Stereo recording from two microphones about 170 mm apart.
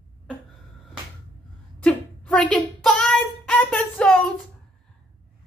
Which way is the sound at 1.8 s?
5° left (ahead or behind).